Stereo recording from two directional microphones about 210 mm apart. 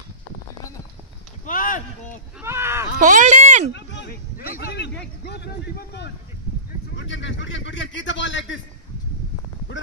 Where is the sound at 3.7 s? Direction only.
55° left (ahead or behind).